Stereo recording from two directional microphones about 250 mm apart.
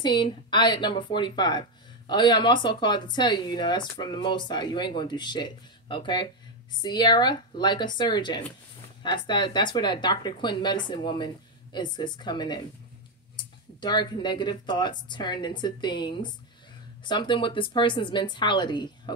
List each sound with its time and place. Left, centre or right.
0.0 s speech: centre
13.7 s speech: centre